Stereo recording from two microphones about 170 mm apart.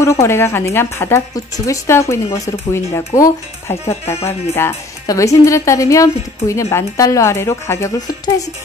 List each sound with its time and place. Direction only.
0.0 s speech: 15° left (ahead or behind)